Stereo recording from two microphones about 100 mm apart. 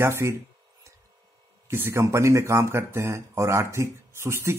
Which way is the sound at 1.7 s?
25° right (ahead or behind).